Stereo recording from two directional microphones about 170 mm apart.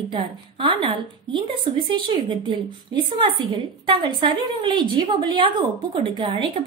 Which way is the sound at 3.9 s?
30° right (ahead or behind).